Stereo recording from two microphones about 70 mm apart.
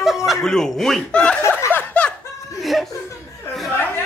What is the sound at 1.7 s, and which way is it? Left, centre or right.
Snicker, left.